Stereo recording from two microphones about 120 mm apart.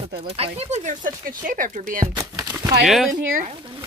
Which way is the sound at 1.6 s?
90° right.